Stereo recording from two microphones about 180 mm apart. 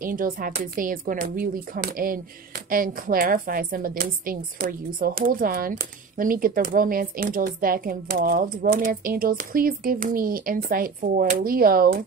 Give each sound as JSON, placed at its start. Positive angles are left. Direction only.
{"t": 0.0, "sound": "speech", "side_deg": -50}